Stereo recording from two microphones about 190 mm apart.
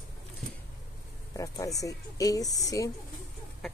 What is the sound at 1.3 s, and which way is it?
Speech, 15° left (ahead or behind).